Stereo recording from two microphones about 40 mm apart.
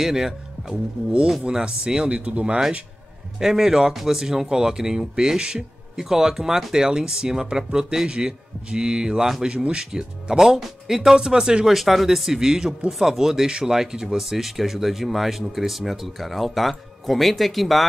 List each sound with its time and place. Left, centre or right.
0.0 s a man's voice: centre
3.3 s a man's voice: centre
11.6 s speech: centre